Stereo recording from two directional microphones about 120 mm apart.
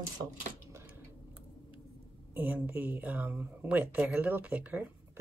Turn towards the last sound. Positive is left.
turn(degrees=-10)  # may be behind; listen again after turning